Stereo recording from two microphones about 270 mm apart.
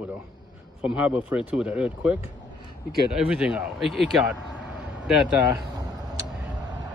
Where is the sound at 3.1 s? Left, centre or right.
Centre.